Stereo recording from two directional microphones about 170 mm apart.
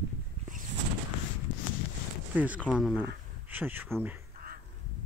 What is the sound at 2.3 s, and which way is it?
Speech, 10° right (ahead or behind).